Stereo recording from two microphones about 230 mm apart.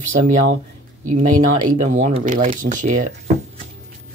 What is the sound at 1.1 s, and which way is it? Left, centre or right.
Speech, right.